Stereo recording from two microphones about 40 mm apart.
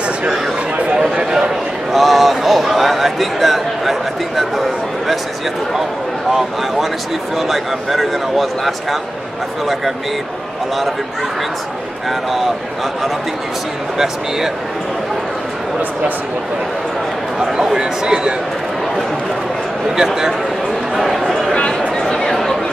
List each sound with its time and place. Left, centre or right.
1.9 s a man's voice: centre
7.3 s a man's voice: centre
13.9 s speech: centre
17.7 s speech: centre
20.0 s speech: centre
20.9 s speech: centre
21.3 s a sound: centre
22.0 s chatter: centre